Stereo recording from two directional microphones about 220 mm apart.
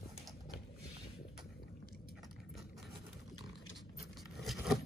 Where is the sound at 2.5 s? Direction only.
Centre (ahead or behind).